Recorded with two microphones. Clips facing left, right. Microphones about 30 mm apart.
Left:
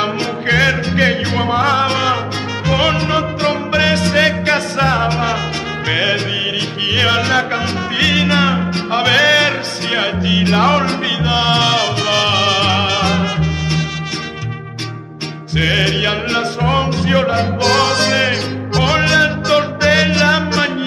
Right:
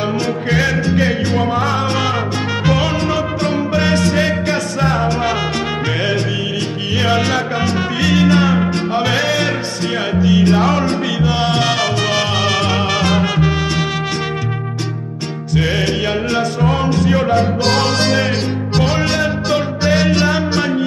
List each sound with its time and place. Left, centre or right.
0.0 s music: left
3.0 s music: left
6.1 s music: left
9.5 s music: left
11.8 s music: centre
15.5 s music: left
17.7 s music: left
18.1 s music: left